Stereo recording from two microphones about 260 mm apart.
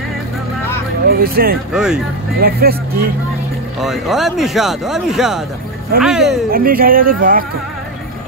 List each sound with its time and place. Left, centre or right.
1.0 s speech: right
1.7 s speech: centre
2.4 s speech: right
3.8 s speech: centre
6.5 s speech: right